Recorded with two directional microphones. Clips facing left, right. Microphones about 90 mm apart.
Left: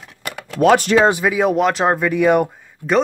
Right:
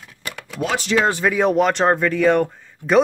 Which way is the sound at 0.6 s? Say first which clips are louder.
Left 8 dB; 55° left (ahead or behind).